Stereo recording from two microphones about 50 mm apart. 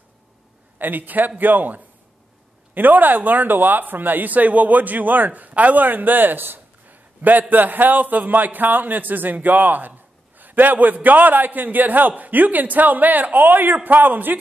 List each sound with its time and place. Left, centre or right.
0.7 s speech: right